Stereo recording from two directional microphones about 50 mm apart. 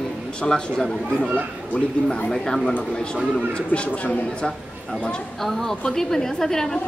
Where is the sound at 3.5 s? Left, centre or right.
Left.